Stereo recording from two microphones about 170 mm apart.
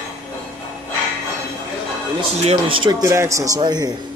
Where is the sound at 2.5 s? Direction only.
30° right (ahead or behind).